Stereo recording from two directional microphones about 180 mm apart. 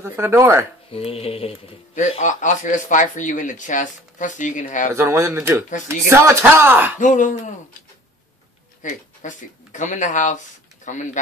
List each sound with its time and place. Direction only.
0.0 s speech: 15° right (ahead or behind)
0.9 s speech: 35° left (ahead or behind)
4.9 s speech: 15° right (ahead or behind)
7.0 s speech: 45° left (ahead or behind)
8.8 s speech: 45° left (ahead or behind)
10.8 s a sound: 40° left (ahead or behind)